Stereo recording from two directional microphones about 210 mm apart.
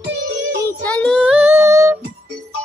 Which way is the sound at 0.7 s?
5° left (ahead or behind).